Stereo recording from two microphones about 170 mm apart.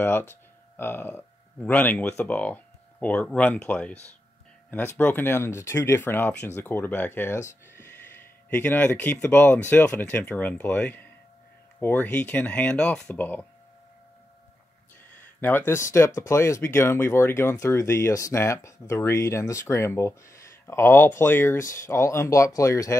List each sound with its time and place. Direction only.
0.0 s speech: 15° left (ahead or behind)
15.4 s speech: 10° left (ahead or behind)